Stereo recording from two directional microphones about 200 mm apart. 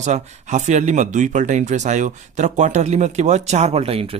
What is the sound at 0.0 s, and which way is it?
Speech, 35° right (ahead or behind).